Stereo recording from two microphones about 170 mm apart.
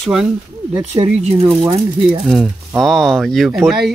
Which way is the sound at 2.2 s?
Centre (ahead or behind).